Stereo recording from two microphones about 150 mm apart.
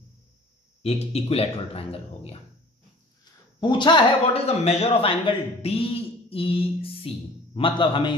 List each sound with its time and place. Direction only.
0.8 s a man's voice: 45° left (ahead or behind)
3.5 s a man's voice: 30° left (ahead or behind)